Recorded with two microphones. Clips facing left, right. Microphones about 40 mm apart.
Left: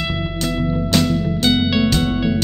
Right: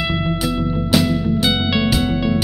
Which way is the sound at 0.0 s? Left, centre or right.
Centre.